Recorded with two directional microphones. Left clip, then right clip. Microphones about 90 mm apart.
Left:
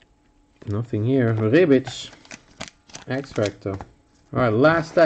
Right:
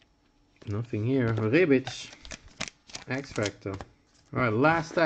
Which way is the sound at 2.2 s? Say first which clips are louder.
Left 1 dB; 35° right (ahead or behind).